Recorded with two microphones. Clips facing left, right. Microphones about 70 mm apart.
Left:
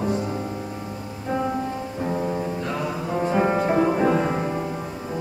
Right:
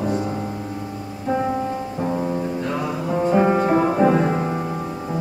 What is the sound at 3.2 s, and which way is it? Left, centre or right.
Music, centre.